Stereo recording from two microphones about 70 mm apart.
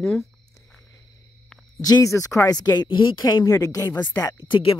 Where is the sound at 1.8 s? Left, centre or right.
Left.